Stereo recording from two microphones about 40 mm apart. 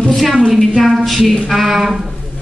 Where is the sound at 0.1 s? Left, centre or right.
Centre.